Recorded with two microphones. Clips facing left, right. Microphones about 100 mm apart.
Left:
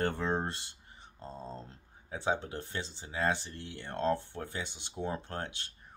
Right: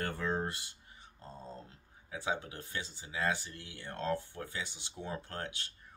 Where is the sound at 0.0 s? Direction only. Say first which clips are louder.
Left 3 dB; 25° left (ahead or behind).